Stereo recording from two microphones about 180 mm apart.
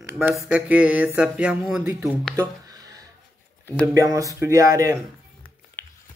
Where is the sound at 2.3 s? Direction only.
20° right (ahead or behind).